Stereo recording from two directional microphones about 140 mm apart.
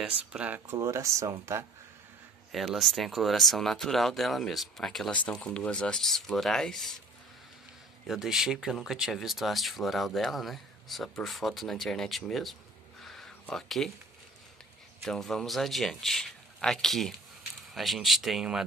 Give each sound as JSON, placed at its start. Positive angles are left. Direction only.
{"t": 0.0, "sound": "speech", "side_deg": -10}
{"t": 0.7, "sound": "speech", "side_deg": -20}
{"t": 2.5, "sound": "speech", "side_deg": 0}
{"t": 8.1, "sound": "speech", "side_deg": -5}
{"t": 13.0, "sound": "a sound", "side_deg": 0}
{"t": 15.0, "sound": "speech", "side_deg": 5}